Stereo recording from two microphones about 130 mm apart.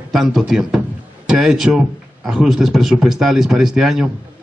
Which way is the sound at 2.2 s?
5° right (ahead or behind).